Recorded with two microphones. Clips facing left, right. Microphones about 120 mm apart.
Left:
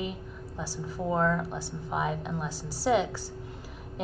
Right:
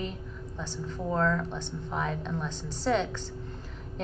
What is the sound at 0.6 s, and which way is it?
A woman's voice, 10° left (ahead or behind).